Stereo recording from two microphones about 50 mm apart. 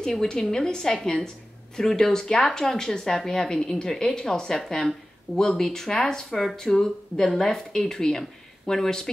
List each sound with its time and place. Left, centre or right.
0.0 s speech: centre